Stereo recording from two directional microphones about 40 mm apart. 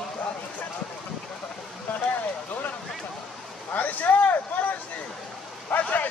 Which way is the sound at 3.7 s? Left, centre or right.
Left.